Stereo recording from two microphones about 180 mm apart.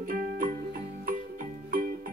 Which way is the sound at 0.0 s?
50° right (ahead or behind).